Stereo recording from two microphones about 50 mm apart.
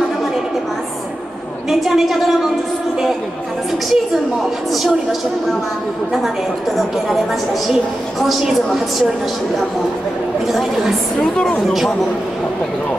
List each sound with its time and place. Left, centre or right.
1.7 s a woman's voice: centre
3.9 s a woman's voice: centre
8.2 s a woman's voice: centre
11.1 s a woman's voice: centre